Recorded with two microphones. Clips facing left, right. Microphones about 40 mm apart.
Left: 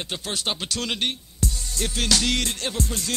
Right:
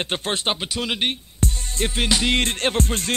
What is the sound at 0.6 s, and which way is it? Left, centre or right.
Speech, centre.